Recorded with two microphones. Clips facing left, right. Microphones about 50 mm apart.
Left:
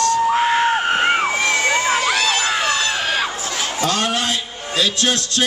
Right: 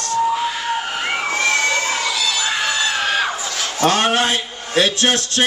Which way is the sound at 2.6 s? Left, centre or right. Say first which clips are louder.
Even; centre.